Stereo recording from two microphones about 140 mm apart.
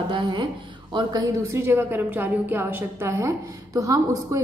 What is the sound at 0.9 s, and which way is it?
A woman's voice, 25° right (ahead or behind).